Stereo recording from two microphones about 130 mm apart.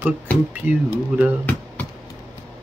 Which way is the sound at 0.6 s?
10° right (ahead or behind).